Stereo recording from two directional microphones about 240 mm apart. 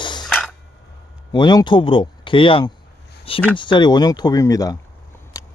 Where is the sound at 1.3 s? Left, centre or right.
Centre.